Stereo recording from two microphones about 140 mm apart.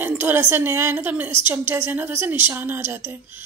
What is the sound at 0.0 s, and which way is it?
A woman's voice, 15° right (ahead or behind).